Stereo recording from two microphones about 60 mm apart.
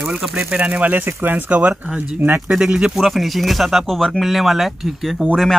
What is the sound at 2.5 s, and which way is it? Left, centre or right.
Speech, centre.